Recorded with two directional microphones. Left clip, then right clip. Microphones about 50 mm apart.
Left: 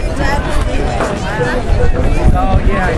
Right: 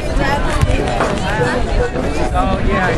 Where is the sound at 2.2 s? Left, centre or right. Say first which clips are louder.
Left 1 dB; right.